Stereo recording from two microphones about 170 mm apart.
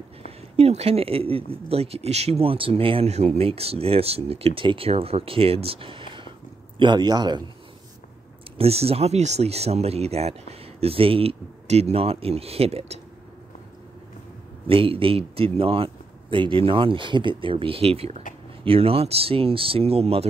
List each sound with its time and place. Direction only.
0.6 s a man's voice: 35° right (ahead or behind)
8.5 s speech: 35° right (ahead or behind)
14.7 s speech: 30° right (ahead or behind)